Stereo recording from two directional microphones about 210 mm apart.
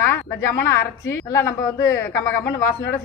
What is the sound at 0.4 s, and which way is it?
A woman's voice, 15° left (ahead or behind).